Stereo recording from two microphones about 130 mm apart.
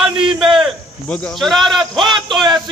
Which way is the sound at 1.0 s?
10° left (ahead or behind).